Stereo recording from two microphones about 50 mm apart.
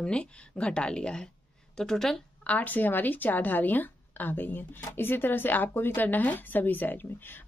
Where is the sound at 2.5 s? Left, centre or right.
Left.